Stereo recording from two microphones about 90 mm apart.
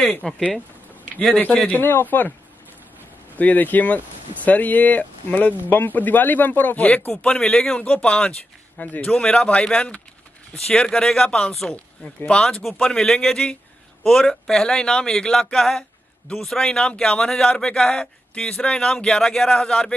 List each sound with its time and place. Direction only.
0.1 s speech: 10° left (ahead or behind)
3.3 s speech: 20° left (ahead or behind)